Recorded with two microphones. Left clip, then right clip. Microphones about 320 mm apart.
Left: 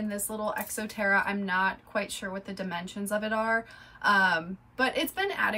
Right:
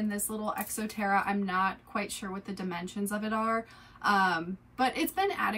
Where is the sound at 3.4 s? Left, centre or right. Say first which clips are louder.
Left 1 dB; left.